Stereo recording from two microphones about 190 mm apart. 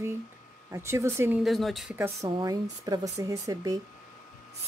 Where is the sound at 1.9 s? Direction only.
10° right (ahead or behind).